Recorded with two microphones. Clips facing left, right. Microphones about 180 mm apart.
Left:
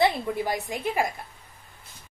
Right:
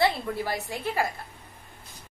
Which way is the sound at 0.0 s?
15° left (ahead or behind).